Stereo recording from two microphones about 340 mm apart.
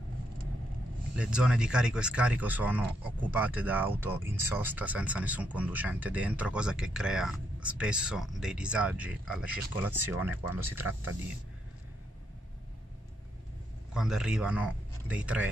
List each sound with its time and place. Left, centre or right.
1.1 s speech: centre
13.9 s speech: centre